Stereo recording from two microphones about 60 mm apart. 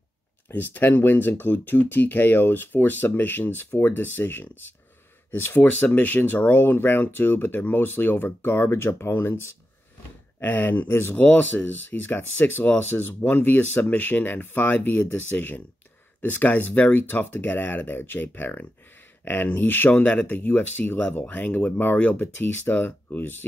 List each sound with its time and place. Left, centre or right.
0.5 s speech: left
5.7 s speech: left
10.4 s speech: left